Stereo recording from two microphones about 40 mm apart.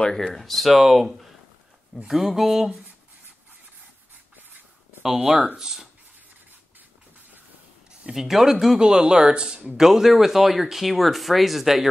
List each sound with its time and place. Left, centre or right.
0.0 s speech: centre
5.6 s speech: centre
8.1 s speech: centre
8.7 s speech: centre
9.8 s speech: centre